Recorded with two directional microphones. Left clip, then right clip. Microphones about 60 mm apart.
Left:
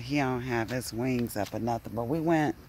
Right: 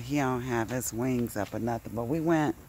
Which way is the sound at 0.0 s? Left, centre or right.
Centre.